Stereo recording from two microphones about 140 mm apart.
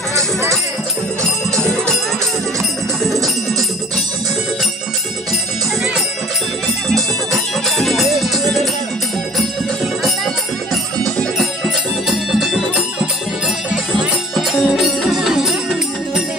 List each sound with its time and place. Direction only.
0.1 s music: 20° right (ahead or behind)
7.7 s music: centre (ahead or behind)
10.0 s music: centre (ahead or behind)